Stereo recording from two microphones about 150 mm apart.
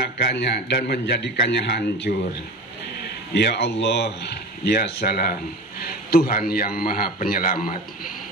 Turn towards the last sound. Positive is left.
turn(degrees=70)  # may be behind; listen again after turning